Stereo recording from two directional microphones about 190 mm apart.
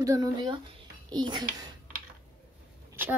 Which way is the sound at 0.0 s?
20° right (ahead or behind).